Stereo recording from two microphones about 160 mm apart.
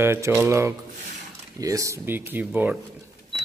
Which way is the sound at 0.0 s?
15° right (ahead or behind).